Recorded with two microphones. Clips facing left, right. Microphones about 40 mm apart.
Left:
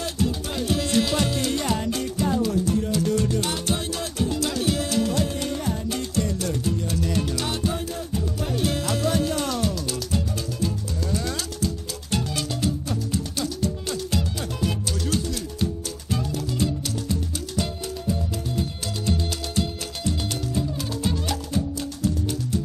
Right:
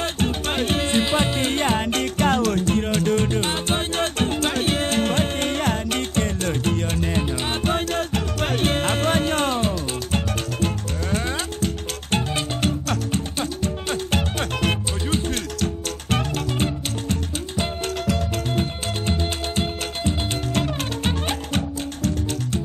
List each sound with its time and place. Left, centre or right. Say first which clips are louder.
0.0 s music: right 3 dB; right
7.6 s music: right 5 dB; right
15.0 s music: right 2 dB; right
15.3 s music: right 2 dB; right
16.5 s music: right 1 dB; right
20.5 s music: right 4 dB; right
21.1 s music: right 2 dB; right